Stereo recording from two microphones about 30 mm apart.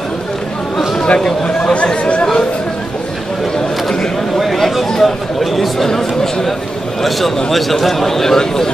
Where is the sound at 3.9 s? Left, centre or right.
Left.